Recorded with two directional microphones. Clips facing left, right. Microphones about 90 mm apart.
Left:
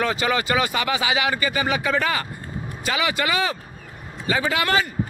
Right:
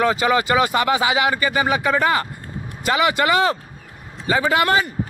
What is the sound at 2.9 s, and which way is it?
Speech, 40° right (ahead or behind).